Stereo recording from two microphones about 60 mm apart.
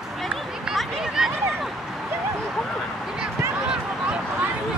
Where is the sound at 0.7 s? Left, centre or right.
Centre.